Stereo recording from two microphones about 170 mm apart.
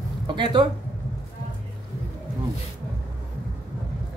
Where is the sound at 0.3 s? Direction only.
25° right (ahead or behind).